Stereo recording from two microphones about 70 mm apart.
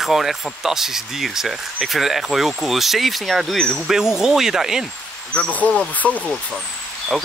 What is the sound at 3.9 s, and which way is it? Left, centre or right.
Speech, centre.